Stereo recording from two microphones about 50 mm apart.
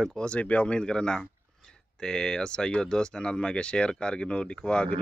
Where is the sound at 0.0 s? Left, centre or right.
Centre.